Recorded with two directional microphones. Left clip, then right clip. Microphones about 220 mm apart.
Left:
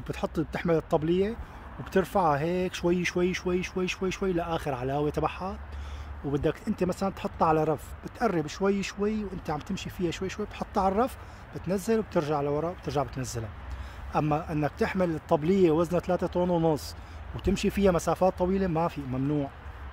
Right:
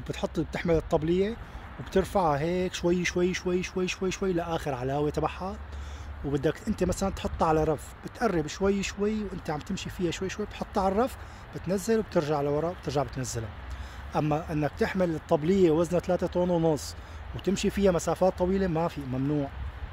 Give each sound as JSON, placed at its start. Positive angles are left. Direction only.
{"t": 0.0, "sound": "speech", "side_deg": 5}